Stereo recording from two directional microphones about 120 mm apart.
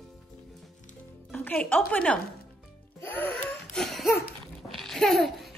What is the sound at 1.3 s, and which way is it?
Music, 15° left (ahead or behind).